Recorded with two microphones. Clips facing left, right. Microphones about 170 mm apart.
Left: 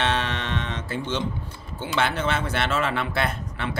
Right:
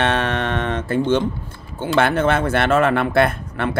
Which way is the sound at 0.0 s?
55° right (ahead or behind).